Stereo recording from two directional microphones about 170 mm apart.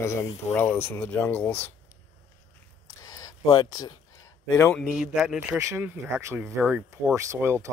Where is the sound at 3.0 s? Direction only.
20° left (ahead or behind).